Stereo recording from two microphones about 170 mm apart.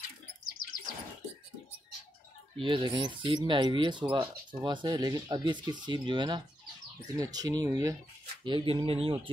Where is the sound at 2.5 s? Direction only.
30° right (ahead or behind).